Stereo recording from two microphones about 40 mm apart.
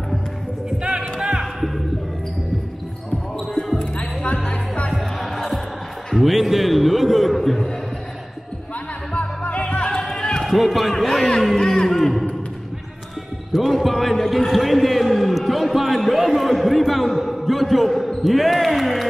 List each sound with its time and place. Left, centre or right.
0.7 s music: centre
1.4 s a sound: centre
3.3 s basketball bounce: centre
3.7 s music: left
4.9 s music: centre
6.1 s a man's voice: centre
9.1 s music: left
9.8 s music: centre
10.4 s a man's voice: centre
11.5 s speech: centre
11.9 s a man's voice: centre
13.5 s a man's voice: centre